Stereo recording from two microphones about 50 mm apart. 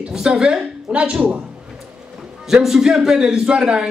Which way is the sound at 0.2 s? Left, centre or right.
Centre.